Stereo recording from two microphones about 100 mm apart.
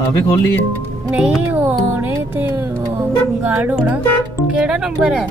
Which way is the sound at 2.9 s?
20° right (ahead or behind).